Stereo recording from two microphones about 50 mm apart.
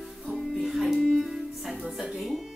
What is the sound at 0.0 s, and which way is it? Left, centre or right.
Music, centre.